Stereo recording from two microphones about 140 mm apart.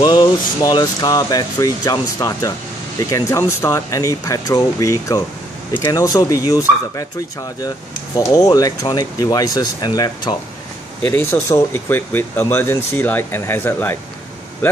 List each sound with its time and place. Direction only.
0.0 s speech: 30° left (ahead or behind)
8.2 s speech: 25° left (ahead or behind)
11.1 s speech: 15° left (ahead or behind)